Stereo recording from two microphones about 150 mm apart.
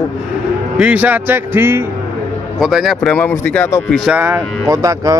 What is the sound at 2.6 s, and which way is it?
Speech, centre (ahead or behind).